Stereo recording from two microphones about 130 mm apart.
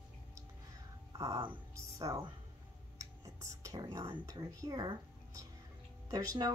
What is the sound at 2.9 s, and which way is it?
Whispering, 25° right (ahead or behind).